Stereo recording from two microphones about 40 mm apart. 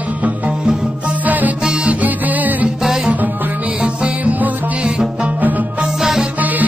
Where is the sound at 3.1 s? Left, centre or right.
Right.